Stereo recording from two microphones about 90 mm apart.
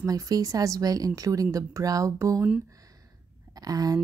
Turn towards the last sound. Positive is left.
turn(degrees=-45)  # may be behind; listen again after turning